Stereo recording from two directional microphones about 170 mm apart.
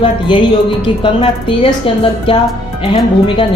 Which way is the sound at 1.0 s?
30° left (ahead or behind).